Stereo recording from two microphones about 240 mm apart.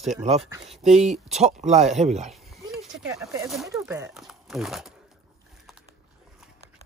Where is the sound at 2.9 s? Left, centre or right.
Centre.